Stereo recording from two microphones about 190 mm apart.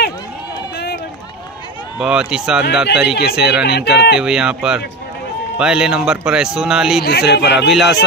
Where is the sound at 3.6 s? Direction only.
60° left (ahead or behind).